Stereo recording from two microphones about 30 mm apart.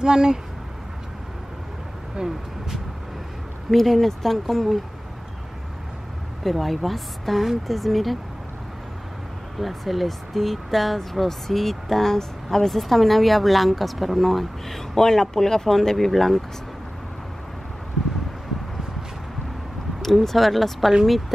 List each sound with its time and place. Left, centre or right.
0.0 s speech: right
2.2 s speech: right
3.7 s speech: centre
6.4 s a woman's voice: centre
9.6 s a woman's voice: centre
20.2 s a woman's voice: centre